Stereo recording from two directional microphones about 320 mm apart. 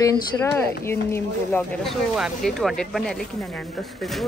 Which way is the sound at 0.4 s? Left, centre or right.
Centre.